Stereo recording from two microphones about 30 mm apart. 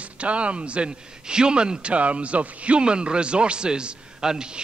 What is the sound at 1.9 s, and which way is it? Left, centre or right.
Speech, right.